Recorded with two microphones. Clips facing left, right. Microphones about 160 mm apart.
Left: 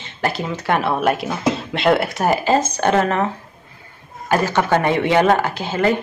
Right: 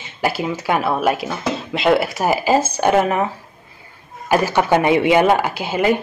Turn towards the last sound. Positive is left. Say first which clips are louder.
# right 1 dB
turn(degrees=-10)  # may be behind; listen again after turning